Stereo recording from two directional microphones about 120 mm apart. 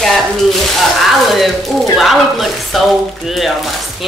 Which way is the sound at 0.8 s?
Centre (ahead or behind).